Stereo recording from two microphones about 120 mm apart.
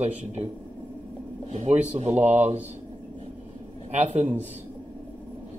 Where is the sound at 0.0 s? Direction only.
65° right (ahead or behind).